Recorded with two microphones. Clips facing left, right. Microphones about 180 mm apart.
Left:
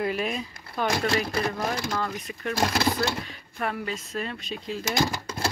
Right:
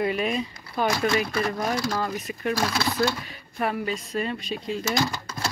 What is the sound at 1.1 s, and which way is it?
Speech, 35° left (ahead or behind).